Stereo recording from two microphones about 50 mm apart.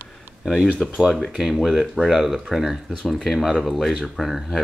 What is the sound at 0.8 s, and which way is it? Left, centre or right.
Speech, centre.